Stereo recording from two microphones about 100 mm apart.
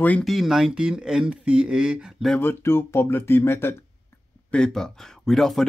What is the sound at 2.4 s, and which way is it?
Speech, 25° left (ahead or behind).